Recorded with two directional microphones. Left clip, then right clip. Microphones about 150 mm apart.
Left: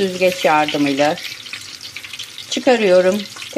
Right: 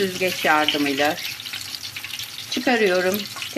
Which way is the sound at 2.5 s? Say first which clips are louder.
Left 6 dB; 30° left (ahead or behind).